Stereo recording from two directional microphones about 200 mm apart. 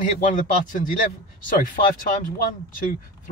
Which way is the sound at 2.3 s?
45° left (ahead or behind).